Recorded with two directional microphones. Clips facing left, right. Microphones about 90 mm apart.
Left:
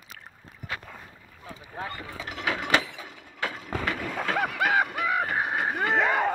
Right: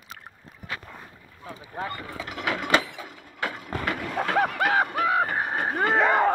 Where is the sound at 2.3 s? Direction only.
40° right (ahead or behind).